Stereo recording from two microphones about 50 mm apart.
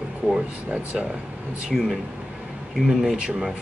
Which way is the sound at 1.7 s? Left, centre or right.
Centre.